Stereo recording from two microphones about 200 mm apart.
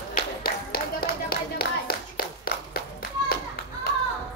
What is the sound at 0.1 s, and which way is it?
Clapping, 50° left (ahead or behind).